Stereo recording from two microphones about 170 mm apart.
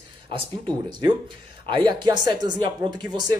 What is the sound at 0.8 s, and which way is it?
A woman's voice, 25° right (ahead or behind).